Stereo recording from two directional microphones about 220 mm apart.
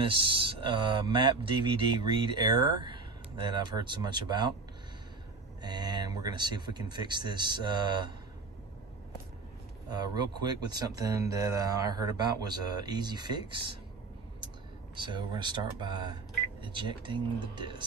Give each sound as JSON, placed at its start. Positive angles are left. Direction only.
{"t": 0.0, "sound": "speech", "side_deg": -25}
{"t": 5.6, "sound": "speech", "side_deg": -20}
{"t": 9.8, "sound": "speech", "side_deg": -20}
{"t": 15.0, "sound": "speech", "side_deg": -20}